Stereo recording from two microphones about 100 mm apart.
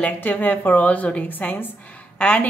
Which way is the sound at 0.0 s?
15° left (ahead or behind).